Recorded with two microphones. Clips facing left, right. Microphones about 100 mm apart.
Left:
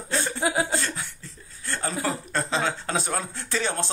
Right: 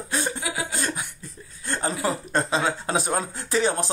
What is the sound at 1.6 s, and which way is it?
Speech, 20° right (ahead or behind).